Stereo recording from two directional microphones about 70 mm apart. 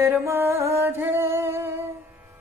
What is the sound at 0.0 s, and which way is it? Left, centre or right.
Music, right.